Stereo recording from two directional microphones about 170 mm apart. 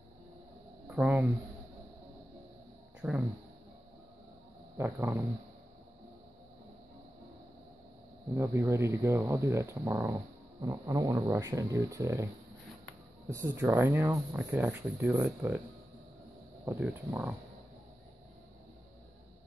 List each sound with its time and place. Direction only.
0.8 s speech: 10° right (ahead or behind)
3.0 s speech: 5° right (ahead or behind)
4.7 s speech: 15° right (ahead or behind)
8.4 s speech: 15° right (ahead or behind)
13.3 s speech: 15° right (ahead or behind)
16.6 s speech: 15° right (ahead or behind)